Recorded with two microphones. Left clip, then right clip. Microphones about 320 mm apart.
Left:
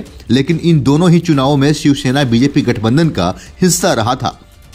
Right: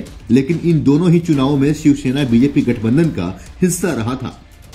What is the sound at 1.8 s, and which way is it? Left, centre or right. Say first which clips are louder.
Speech: left 2 dB; centre.